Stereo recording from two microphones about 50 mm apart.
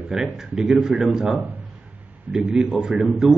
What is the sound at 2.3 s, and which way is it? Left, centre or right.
Speech, right.